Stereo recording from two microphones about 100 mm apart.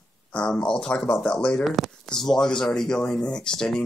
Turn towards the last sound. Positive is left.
turn(degrees=5)  # may be behind; listen again after turning